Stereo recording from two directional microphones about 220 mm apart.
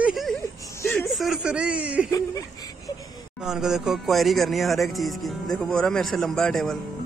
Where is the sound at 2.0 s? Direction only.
15° left (ahead or behind).